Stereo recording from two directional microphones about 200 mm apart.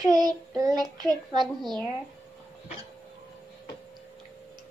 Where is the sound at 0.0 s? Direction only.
20° right (ahead or behind).